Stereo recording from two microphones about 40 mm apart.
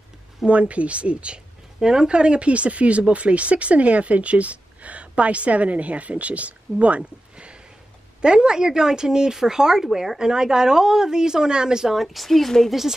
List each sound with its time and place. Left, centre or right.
0.5 s speech: right
1.8 s speech: centre